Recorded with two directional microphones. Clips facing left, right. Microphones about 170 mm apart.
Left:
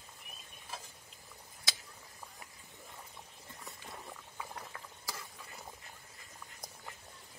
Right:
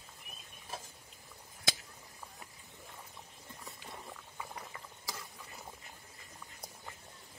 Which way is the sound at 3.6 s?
Centre (ahead or behind).